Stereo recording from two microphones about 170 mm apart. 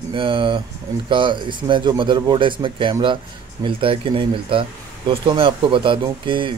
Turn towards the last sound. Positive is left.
turn(degrees=-30)  # may be behind; listen again after turning